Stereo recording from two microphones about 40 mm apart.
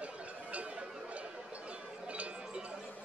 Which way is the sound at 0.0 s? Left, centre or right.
Right.